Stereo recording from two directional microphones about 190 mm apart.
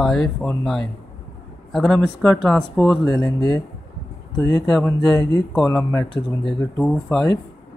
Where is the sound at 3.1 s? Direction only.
20° left (ahead or behind).